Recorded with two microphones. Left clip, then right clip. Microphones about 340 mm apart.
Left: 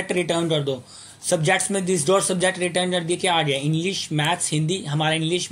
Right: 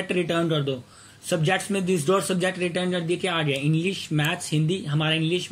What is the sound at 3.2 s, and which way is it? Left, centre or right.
Speech, centre.